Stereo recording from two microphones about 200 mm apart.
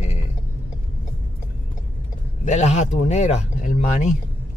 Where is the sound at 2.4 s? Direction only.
35° left (ahead or behind).